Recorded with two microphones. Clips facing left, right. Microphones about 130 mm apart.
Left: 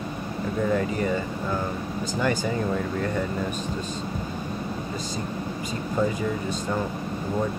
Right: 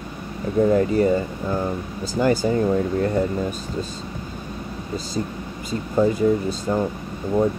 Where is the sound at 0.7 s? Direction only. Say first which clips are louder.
Right 7 dB; 35° right (ahead or behind).